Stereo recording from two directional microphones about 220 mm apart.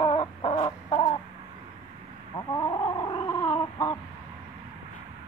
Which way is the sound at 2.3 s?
20° left (ahead or behind).